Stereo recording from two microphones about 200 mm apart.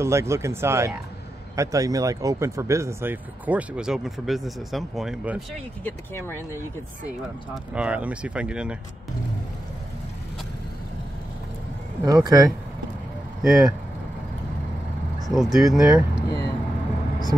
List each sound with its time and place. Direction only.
0.0 s speech: 15° right (ahead or behind)
5.9 s speech: 10° left (ahead or behind)
6.5 s speech: 10° right (ahead or behind)
12.0 s speech: 15° right (ahead or behind)
13.4 s speech: centre (ahead or behind)
15.2 s speech: centre (ahead or behind)